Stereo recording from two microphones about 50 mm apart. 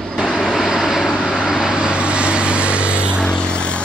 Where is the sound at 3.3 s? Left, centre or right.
Left.